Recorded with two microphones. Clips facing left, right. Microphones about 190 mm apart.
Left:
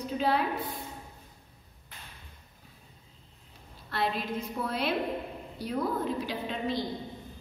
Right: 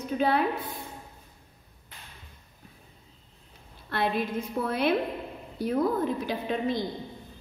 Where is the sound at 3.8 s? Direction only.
55° right (ahead or behind).